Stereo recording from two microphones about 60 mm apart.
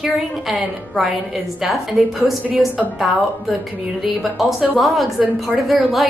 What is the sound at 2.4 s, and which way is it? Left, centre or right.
Speech, right.